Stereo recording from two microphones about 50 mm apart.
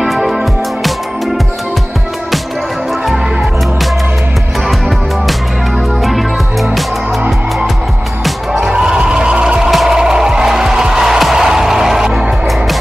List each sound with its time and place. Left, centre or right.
0.0 s music: centre
4.6 s music: centre
8.5 s music: centre